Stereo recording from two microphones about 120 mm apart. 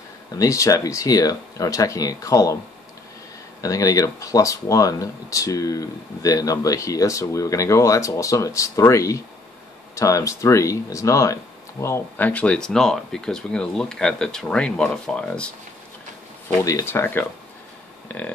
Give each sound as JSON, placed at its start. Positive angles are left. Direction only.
{"t": 0.4, "sound": "speech", "side_deg": 25}
{"t": 3.6, "sound": "speech", "side_deg": 25}
{"t": 12.3, "sound": "speech", "side_deg": 10}
{"t": 16.4, "sound": "speech", "side_deg": 20}